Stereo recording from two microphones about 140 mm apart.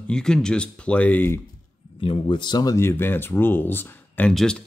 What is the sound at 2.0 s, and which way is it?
Speech, 35° left (ahead or behind).